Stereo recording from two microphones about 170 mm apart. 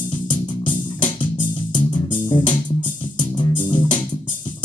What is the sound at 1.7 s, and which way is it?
Music, 30° left (ahead or behind).